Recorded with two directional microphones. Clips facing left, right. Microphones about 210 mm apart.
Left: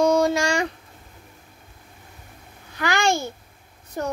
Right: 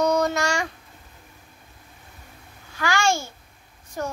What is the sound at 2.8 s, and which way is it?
Babbling, 20° left (ahead or behind).